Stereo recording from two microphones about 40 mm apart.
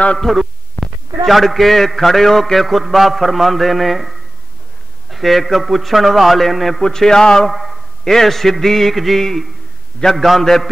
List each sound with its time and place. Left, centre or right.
0.2 s a man's voice: centre
6.8 s a man's voice: centre
7.5 s a sound: centre
8.0 s a man's voice: centre